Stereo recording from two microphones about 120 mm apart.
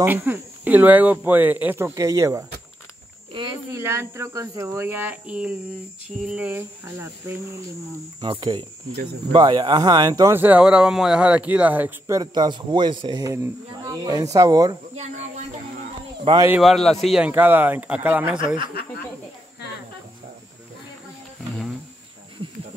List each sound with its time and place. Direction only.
0.0 s speech: 15° right (ahead or behind)
2.0 s speech: 25° right (ahead or behind)
3.7 s speech: 20° right (ahead or behind)
8.2 s speech: 40° right (ahead or behind)
10.3 s speech: 15° right (ahead or behind)
12.1 s speech: 35° right (ahead or behind)
16.3 s speech: 45° right (ahead or behind)
16.6 s a man's voice: centre (ahead or behind)
17.2 s speech: 15° right (ahead or behind)